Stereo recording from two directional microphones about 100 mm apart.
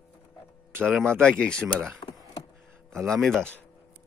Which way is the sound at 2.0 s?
50° left (ahead or behind).